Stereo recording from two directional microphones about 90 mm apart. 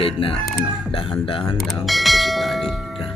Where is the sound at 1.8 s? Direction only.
Centre (ahead or behind).